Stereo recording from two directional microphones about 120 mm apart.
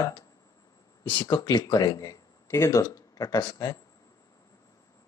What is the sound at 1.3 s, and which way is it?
Speech, 35° left (ahead or behind).